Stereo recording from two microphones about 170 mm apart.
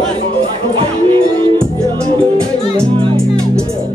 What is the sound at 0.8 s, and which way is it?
Music, 30° right (ahead or behind).